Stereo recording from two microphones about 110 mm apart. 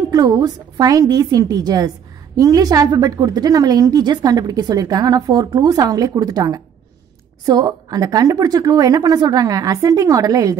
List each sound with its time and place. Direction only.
0.1 s a woman's voice: 35° right (ahead or behind)